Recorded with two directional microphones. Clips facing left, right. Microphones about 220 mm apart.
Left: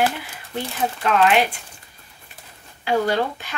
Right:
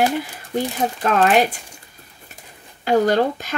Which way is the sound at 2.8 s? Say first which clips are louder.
Right 4 dB; 45° right (ahead or behind).